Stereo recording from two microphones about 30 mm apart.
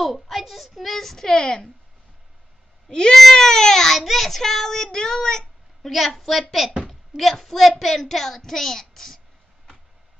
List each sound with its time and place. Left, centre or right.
0.0 s a child's voice: centre
2.9 s speech: left
3.3 s speech: centre
3.9 s speech: centre
5.8 s a woman's voice: centre
6.9 s a sound: centre
7.3 s a child's voice: centre